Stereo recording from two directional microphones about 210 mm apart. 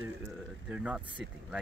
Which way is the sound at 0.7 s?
5° right (ahead or behind).